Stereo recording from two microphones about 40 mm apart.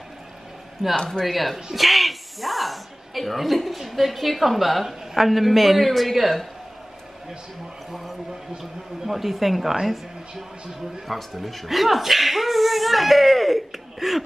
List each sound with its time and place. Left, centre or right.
0.9 s speech: centre
1.2 s a woman's voice: centre
1.7 s a sound: centre
3.8 s a woman's voice: centre
7.9 s a woman's voice: centre